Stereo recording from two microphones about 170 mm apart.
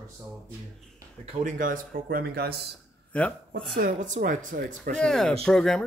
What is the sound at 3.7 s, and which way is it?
Speech, 50° right (ahead or behind).